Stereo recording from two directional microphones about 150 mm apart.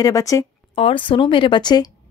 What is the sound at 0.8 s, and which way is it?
A woman's voice, 35° left (ahead or behind).